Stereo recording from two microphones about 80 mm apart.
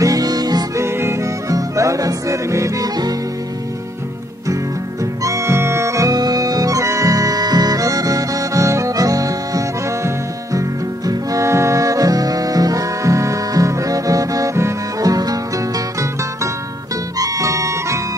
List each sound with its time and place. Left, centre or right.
0.0 s music: right
0.7 s music: right
5.2 s music: right
17.2 s harmonica: right